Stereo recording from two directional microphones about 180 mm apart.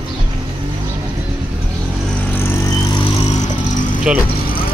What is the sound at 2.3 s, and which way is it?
Vehicle, 15° left (ahead or behind).